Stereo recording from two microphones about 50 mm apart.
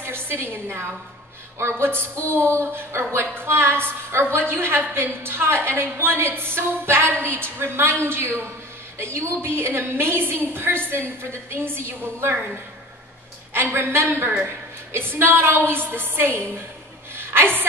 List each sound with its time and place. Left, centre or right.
0.0 s a woman's voice: right
1.6 s a woman's voice: right
13.5 s a woman's voice: right
17.1 s a sound: right